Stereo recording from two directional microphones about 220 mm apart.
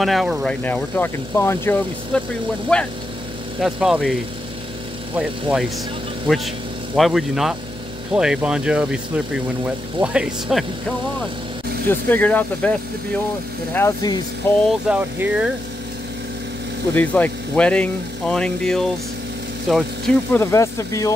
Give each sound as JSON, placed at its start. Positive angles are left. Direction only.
{"t": 0.0, "sound": "speech", "side_deg": 0}
{"t": 11.9, "sound": "speech", "side_deg": 10}
{"t": 13.7, "sound": "speech", "side_deg": 15}
{"t": 14.9, "sound": "speech", "side_deg": -10}
{"t": 16.9, "sound": "speech", "side_deg": 5}
{"t": 20.3, "sound": "speech", "side_deg": 15}